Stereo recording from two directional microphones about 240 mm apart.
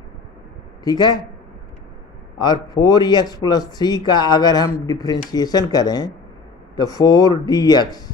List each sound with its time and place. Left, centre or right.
0.8 s speech: centre
2.7 s speech: centre